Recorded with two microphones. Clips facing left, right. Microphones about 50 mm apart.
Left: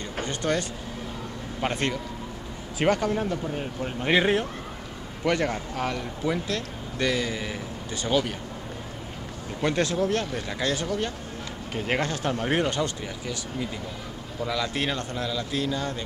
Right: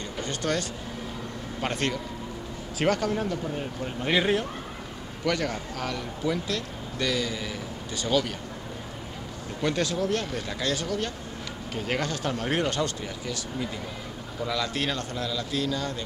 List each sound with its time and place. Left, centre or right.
0.2 s speech: left
1.7 s a man's voice: centre
9.6 s a man's voice: left
12.3 s a man's voice: centre
14.4 s speech: centre
14.7 s a man's voice: left